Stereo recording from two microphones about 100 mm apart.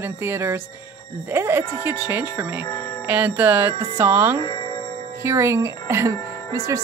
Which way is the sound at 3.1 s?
15° right (ahead or behind).